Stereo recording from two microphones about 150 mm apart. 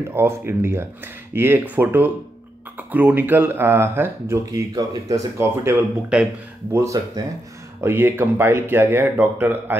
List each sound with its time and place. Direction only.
0.1 s speech: 15° right (ahead or behind)
6.7 s speech: 20° right (ahead or behind)